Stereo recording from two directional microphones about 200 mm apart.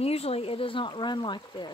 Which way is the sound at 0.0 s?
30° left (ahead or behind).